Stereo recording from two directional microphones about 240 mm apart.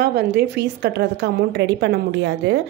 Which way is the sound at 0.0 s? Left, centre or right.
Right.